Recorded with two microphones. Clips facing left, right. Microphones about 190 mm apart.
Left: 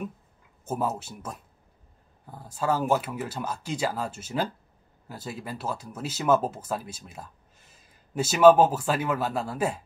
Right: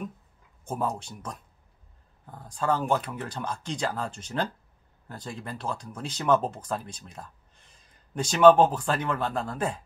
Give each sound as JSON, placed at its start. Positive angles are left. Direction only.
{"t": 0.7, "sound": "speech", "side_deg": 5}